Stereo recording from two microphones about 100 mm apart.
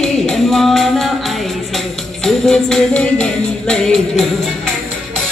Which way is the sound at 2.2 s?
5° left (ahead or behind).